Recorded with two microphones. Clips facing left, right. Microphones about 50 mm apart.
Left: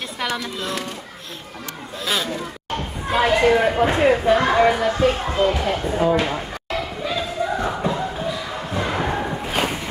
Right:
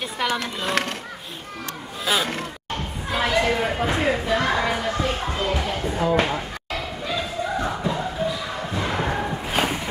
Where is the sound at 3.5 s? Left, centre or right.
Centre.